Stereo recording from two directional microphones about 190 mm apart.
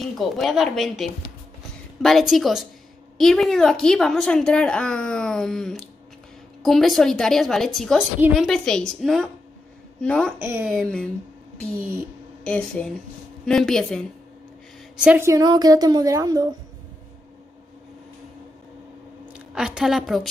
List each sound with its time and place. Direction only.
0.0 s a woman's voice: centre (ahead or behind)
10.4 s speech: 10° right (ahead or behind)
12.4 s a woman's voice: 5° left (ahead or behind)
15.0 s a woman's voice: 15° right (ahead or behind)
19.3 s a woman's voice: 5° right (ahead or behind)